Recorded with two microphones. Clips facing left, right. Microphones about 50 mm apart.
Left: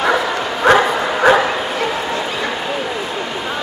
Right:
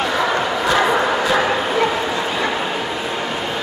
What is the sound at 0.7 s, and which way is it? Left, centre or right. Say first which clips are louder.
Bow-wow: left 7 dB; left.